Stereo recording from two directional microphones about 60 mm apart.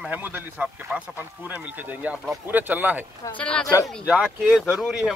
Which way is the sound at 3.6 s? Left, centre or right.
Left.